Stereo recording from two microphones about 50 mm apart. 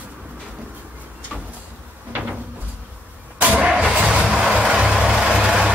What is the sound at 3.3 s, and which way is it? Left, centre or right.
Vehicle, right.